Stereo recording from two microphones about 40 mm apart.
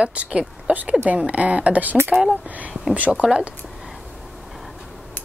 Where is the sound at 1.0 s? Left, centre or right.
Right.